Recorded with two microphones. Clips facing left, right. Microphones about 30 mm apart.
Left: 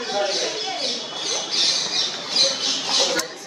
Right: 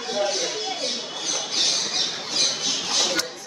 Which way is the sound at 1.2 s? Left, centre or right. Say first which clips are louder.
Left 2 dB; left.